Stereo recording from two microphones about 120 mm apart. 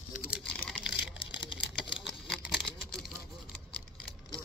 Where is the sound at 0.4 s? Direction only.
5° left (ahead or behind).